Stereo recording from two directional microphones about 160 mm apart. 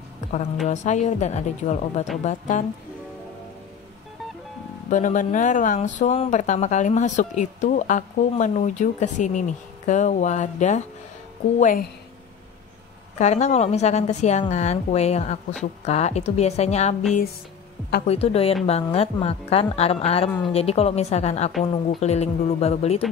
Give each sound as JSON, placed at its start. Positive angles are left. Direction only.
{"t": 0.7, "sound": "speech", "side_deg": 45}
{"t": 4.8, "sound": "speech", "side_deg": 55}
{"t": 13.2, "sound": "speech", "side_deg": 45}
{"t": 18.0, "sound": "speech", "side_deg": 40}
{"t": 21.5, "sound": "speech", "side_deg": 0}
{"t": 22.0, "sound": "speech", "side_deg": 40}